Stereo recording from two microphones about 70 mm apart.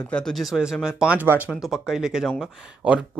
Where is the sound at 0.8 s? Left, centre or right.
Centre.